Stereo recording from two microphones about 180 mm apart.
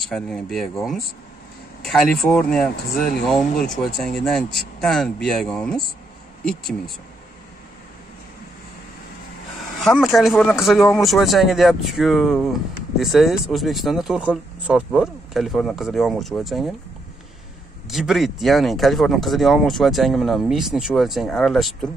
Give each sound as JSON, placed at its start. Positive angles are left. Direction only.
{"t": 0.0, "sound": "speech", "side_deg": 0}
{"t": 1.8, "sound": "a sound", "side_deg": 0}
{"t": 2.2, "sound": "speech", "side_deg": 5}
{"t": 9.8, "sound": "speech", "side_deg": 0}
{"t": 17.8, "sound": "speech", "side_deg": 0}